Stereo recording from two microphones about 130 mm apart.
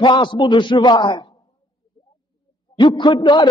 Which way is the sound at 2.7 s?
35° left (ahead or behind).